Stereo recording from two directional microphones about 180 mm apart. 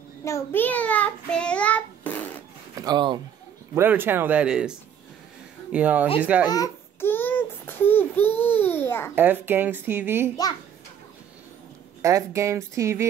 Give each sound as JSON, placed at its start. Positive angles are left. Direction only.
{"t": 0.2, "sound": "a child's voice", "side_deg": 15}
{"t": 2.7, "sound": "speech", "side_deg": -20}
{"t": 3.7, "sound": "speech", "side_deg": -10}
{"t": 6.4, "sound": "babbling", "side_deg": 20}
{"t": 9.1, "sound": "speech", "side_deg": -10}
{"t": 12.0, "sound": "speech", "side_deg": -15}